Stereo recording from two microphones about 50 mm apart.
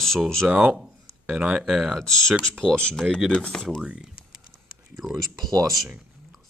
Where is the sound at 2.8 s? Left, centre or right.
Centre.